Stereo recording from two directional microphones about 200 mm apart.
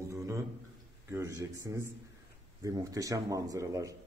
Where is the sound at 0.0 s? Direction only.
15° right (ahead or behind).